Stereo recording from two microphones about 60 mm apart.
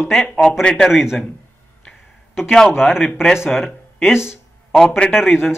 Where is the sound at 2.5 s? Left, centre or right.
Centre.